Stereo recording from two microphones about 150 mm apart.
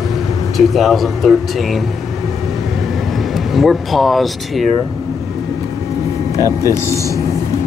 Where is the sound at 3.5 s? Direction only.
Centre (ahead or behind).